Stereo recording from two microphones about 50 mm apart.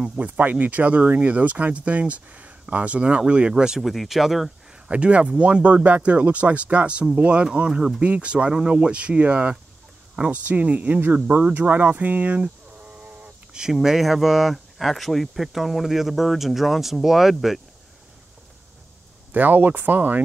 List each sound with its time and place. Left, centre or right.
0.2 s speech: right; by 3.8 s centre
3.8 s speech: centre
4.8 s speech: right
10.4 s speech: right
12.4 s sheep: right
13.5 s a sound: centre
13.7 s speech: centre
19.3 s speech: right